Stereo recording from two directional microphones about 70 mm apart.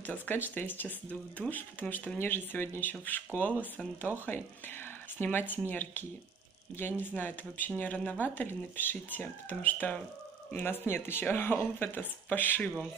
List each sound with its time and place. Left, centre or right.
0.0 s speech: left
5.2 s speech: left